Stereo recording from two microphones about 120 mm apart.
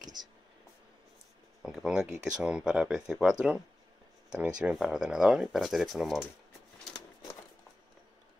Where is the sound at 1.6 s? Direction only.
Centre (ahead or behind).